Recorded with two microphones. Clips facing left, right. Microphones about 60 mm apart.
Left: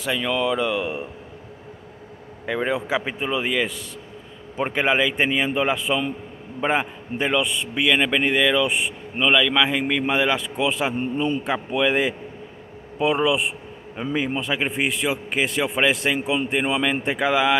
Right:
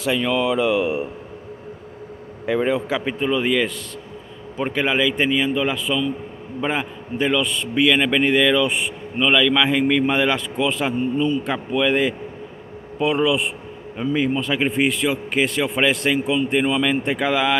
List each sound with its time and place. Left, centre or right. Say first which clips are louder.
0.0 s speech: right 3 dB; centre
2.4 s speech: right 4 dB; centre
2.9 s a man's voice: right 3 dB; centre
4.6 s a man's voice: even; centre